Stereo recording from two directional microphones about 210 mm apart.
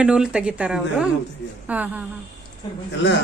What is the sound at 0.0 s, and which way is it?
A man's voice, 5° right (ahead or behind).